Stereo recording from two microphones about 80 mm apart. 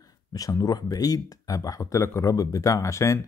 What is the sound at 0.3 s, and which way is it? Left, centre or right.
Speech, left.